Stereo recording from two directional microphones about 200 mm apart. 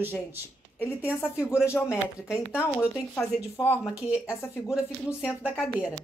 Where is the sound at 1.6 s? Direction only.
10° left (ahead or behind).